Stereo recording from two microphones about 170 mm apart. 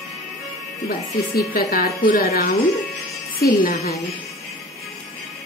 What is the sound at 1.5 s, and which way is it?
A woman's voice, 60° left (ahead or behind).